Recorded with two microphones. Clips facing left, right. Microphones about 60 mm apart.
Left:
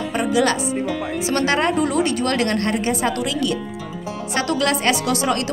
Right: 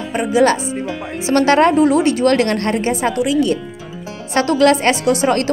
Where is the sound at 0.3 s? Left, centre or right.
Right.